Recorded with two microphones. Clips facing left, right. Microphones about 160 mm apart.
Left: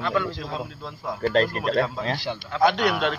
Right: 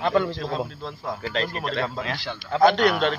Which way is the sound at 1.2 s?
45° left (ahead or behind).